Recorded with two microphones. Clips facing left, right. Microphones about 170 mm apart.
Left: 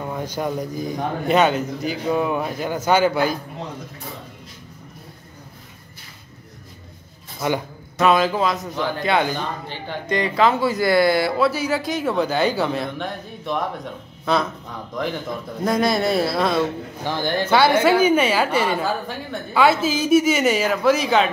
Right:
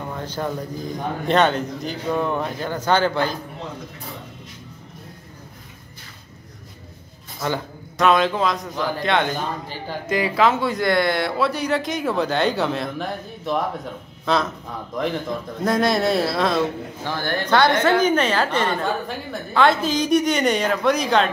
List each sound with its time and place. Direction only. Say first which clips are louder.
0.1 s speech: left 2 dB; 10° left (ahead or behind)
7.3 s a man's voice: left 2 dB; 15° left (ahead or behind)
8.0 s a man's voice: even; 5° left (ahead or behind)
15.6 s a man's voice: even; centre (ahead or behind)
17.0 s speech: left 2 dB; 15° left (ahead or behind)
17.5 s a man's voice: left 1 dB; 5° left (ahead or behind)